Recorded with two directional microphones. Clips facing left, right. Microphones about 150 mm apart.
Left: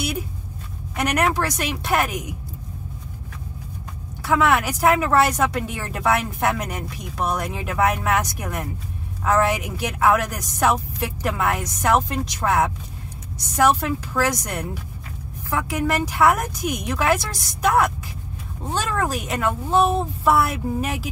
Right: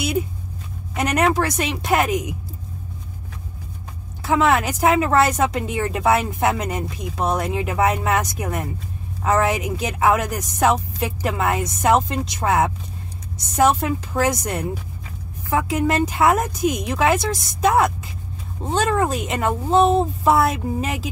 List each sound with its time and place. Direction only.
0.9 s a woman's voice: 25° right (ahead or behind)
4.2 s a woman's voice: 25° right (ahead or behind)